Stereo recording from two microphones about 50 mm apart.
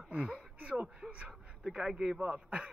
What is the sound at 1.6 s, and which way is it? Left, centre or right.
A man's voice, centre.